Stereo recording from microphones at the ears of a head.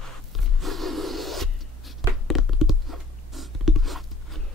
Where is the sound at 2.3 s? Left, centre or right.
Left.